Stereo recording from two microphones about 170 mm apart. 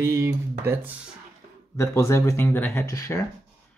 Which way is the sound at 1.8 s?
15° left (ahead or behind).